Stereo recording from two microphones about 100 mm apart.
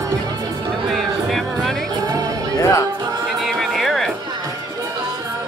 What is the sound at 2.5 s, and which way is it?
Music, 30° left (ahead or behind).